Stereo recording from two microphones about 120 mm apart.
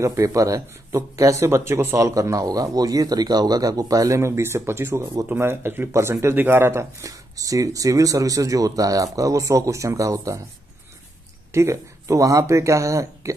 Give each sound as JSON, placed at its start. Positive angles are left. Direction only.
{"t": 0.0, "sound": "speech", "side_deg": -25}
{"t": 11.5, "sound": "speech", "side_deg": -25}